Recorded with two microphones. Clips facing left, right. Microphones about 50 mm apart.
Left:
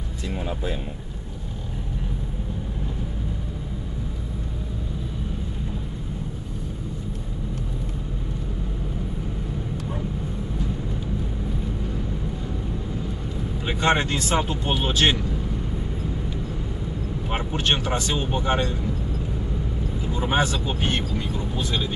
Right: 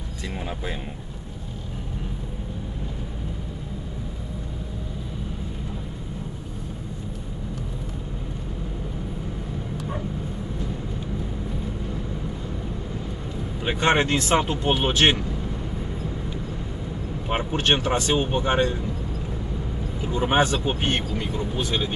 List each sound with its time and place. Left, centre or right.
13.7 s speech: right
17.5 s speech: right
20.2 s speech: right